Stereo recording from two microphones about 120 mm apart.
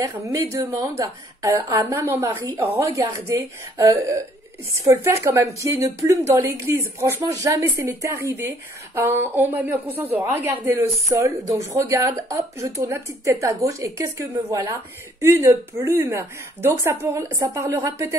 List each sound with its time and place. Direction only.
0.0 s speech: 30° right (ahead or behind)